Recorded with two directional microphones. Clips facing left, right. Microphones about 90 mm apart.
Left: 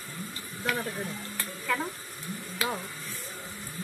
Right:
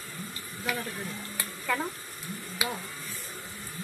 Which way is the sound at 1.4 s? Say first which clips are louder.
Even; 10° right (ahead or behind).